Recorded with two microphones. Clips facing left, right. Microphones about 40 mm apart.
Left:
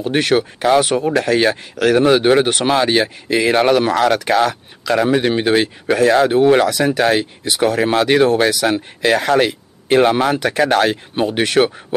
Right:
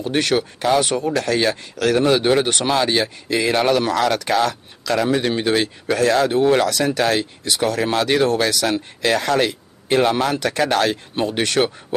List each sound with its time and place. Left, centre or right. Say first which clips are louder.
0.0 s speech: left 3 dB; centre